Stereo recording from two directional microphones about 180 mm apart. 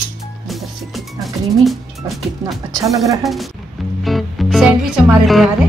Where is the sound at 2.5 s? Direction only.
Centre (ahead or behind).